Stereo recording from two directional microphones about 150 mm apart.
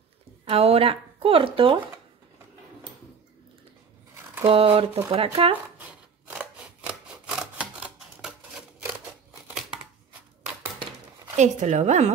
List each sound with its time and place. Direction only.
0.5 s speech: 40° right (ahead or behind)
4.5 s speech: 40° right (ahead or behind)
5.8 s rub: 10° right (ahead or behind)
11.3 s speech: 50° right (ahead or behind)